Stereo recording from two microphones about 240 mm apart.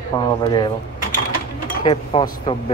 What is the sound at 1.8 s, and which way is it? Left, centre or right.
Speech, left.